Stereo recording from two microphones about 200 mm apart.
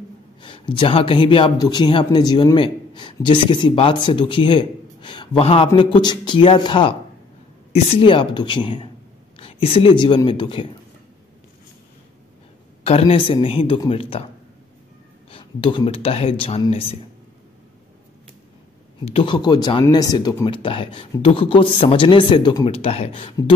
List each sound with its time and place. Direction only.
0.4 s a man's voice: 25° left (ahead or behind)
12.8 s speech: 30° left (ahead or behind)
15.3 s speech: 25° left (ahead or behind)
19.0 s speech: 25° left (ahead or behind)